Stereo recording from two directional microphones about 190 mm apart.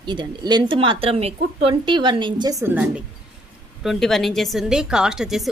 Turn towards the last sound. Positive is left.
turn(degrees=0)  # may be behind; listen again after turning